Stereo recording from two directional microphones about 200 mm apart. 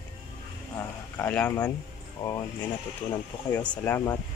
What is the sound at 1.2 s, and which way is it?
Speech, 5° left (ahead or behind).